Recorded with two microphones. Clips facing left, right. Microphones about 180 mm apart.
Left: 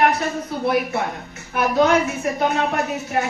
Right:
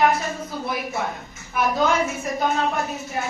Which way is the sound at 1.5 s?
65° left (ahead or behind).